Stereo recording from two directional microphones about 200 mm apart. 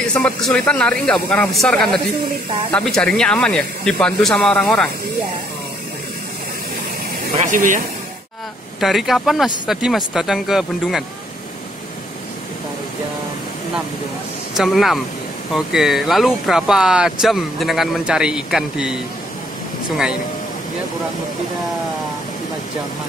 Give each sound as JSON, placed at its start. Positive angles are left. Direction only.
{"t": 0.0, "sound": "speech", "side_deg": 5}
{"t": 7.3, "sound": "speech", "side_deg": -40}
{"t": 8.7, "sound": "speech", "side_deg": 0}
{"t": 14.6, "sound": "speech", "side_deg": 0}